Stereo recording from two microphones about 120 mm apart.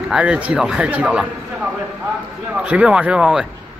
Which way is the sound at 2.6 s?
10° right (ahead or behind).